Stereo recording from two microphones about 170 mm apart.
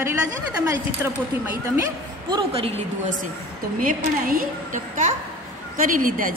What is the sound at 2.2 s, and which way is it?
Speech, 25° right (ahead or behind).